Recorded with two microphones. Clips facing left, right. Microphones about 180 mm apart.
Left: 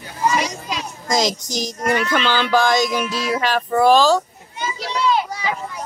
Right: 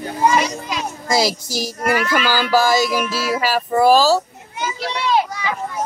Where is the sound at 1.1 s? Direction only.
5° right (ahead or behind).